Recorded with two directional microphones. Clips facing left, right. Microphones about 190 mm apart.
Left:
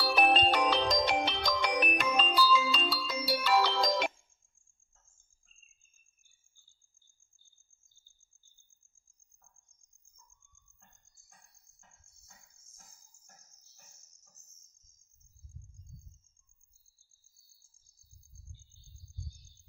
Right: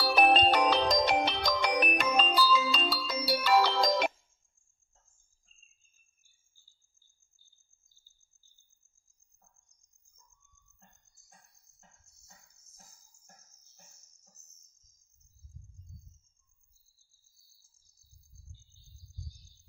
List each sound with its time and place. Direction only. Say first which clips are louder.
0.0 s music: right 3 dB; 40° right (ahead or behind)